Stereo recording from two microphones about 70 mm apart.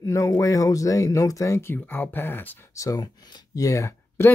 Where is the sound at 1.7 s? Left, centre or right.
Left.